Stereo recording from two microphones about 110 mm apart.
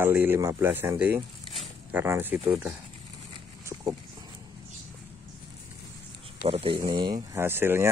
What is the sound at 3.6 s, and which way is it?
Dog, 25° right (ahead or behind).